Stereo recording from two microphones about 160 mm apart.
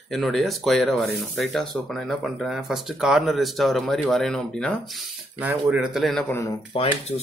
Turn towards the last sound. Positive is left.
turn(degrees=40)  # may be behind; listen again after turning